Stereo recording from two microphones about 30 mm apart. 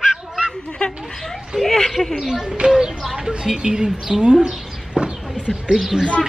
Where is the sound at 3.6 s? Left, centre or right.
Right.